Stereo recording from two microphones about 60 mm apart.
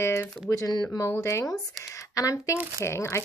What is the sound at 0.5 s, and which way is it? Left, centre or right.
Speech, left.